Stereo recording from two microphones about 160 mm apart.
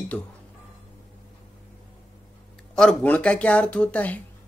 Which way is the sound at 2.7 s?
5° left (ahead or behind).